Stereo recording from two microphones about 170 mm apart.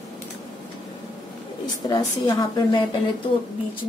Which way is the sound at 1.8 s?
25° left (ahead or behind).